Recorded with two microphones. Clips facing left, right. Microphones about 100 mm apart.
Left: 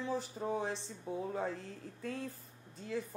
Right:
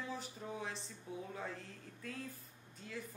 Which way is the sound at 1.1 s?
40° left (ahead or behind).